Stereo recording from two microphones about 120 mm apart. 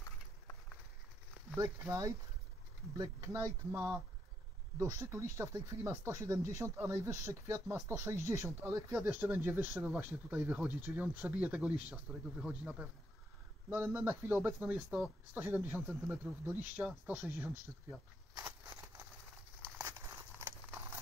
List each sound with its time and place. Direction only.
1.6 s speech: 30° right (ahead or behind); by 12.8 s 5° right (ahead or behind)
13.7 s speech: 15° right (ahead or behind)
19.8 s a sound: 25° right (ahead or behind)